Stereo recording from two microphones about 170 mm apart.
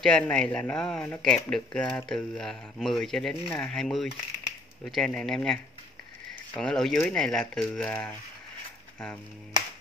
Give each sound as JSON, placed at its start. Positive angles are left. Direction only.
{"t": 0.0, "sound": "speech", "side_deg": 5}